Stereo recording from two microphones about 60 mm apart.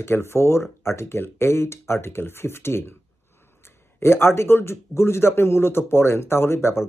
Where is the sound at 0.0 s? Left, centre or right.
Left.